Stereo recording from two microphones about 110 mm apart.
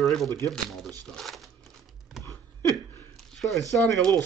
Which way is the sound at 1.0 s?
Centre (ahead or behind).